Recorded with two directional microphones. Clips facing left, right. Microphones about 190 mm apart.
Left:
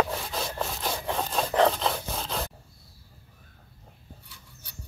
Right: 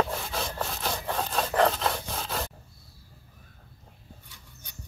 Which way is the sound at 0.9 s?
10° left (ahead or behind).